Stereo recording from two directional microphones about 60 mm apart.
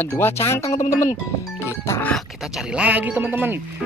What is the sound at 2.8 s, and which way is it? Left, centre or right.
Speech, right.